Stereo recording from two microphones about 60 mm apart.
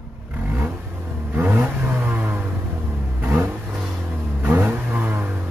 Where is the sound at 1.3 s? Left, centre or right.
Right.